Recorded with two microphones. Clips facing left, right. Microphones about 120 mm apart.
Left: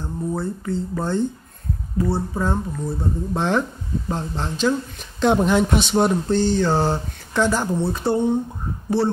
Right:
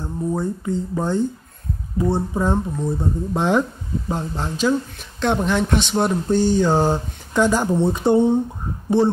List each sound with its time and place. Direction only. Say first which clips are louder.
0.0 s speech: right 2 dB; 15° right (ahead or behind)
5.2 s speech: left 3 dB; 5° left (ahead or behind)
6.2 s speech: right 2 dB; 10° right (ahead or behind)